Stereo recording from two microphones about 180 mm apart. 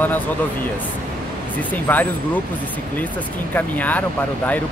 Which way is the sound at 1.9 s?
10° left (ahead or behind).